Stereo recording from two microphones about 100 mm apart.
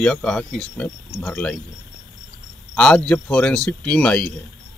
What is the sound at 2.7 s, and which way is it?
Speech, 10° left (ahead or behind).